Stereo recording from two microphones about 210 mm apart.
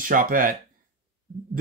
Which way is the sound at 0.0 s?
40° right (ahead or behind).